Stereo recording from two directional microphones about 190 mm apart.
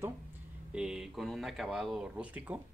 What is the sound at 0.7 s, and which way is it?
Speech, 5° right (ahead or behind).